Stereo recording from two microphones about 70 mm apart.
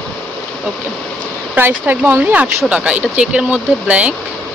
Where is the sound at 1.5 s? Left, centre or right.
Right.